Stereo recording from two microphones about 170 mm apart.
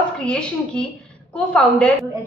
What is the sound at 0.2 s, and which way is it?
A woman's voice, 5° left (ahead or behind).